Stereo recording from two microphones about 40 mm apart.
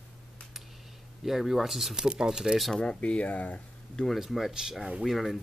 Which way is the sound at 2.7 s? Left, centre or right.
Left.